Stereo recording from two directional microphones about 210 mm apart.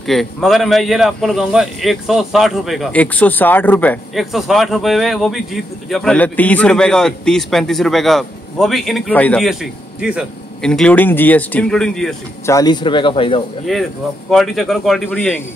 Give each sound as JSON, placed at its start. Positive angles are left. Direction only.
{"t": 0.0, "sound": "a man's voice", "side_deg": 0}
{"t": 12.4, "sound": "speech", "side_deg": 20}
{"t": 13.7, "sound": "a man's voice", "side_deg": 0}